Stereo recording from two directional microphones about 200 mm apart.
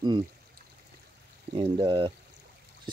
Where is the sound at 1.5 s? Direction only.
25° right (ahead or behind).